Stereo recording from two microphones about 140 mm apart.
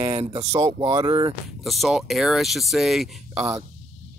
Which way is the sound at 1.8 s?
Centre (ahead or behind).